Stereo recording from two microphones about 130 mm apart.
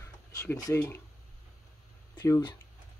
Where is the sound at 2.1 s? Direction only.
30° left (ahead or behind).